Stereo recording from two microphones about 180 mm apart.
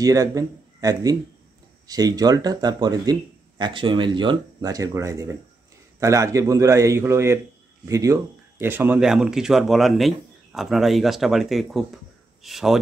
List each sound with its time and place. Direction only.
0.0 s a man's voice: 20° right (ahead or behind); by 12.7 s centre (ahead or behind)